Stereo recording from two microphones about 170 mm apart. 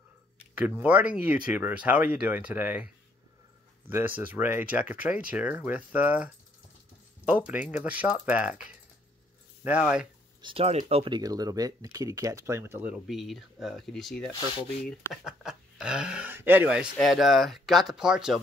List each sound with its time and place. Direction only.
0.6 s speech: 10° right (ahead or behind)
3.9 s speech: 10° right (ahead or behind)
10.4 s speech: 35° right (ahead or behind)
11.1 s speech: 25° right (ahead or behind)
13.0 s speech: centre (ahead or behind)
14.3 s sanding: 25° left (ahead or behind)
15.2 s speech: 5° right (ahead or behind)